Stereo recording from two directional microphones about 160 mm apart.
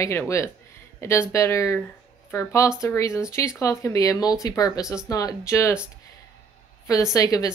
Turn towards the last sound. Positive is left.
turn(degrees=20)  # may be behind; listen again after turning